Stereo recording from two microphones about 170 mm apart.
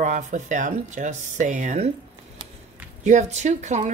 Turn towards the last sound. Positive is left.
turn(degrees=-45)  # may be behind; listen again after turning